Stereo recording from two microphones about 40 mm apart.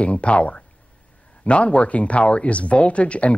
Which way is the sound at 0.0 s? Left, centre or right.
Left.